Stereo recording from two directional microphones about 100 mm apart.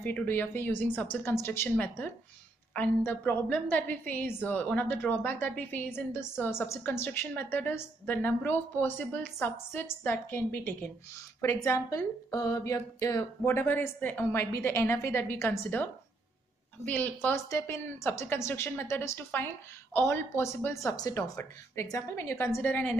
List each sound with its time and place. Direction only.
0.0 s a woman's voice: 20° left (ahead or behind)
12.3 s a sound: 40° left (ahead or behind)
13.5 s a woman's voice: 20° left (ahead or behind)
17.5 s a woman's voice: 25° left (ahead or behind)
20.8 s a sound: 35° left (ahead or behind)
21.9 s a woman's voice: 30° left (ahead or behind)